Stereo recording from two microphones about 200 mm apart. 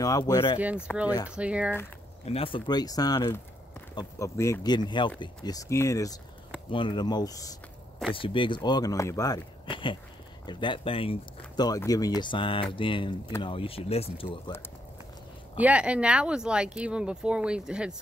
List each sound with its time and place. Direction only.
0.0 s speech: 15° left (ahead or behind)
0.6 s speech: 5° right (ahead or behind)
2.2 s speech: 30° left (ahead or behind)
15.5 s speech: 5° right (ahead or behind)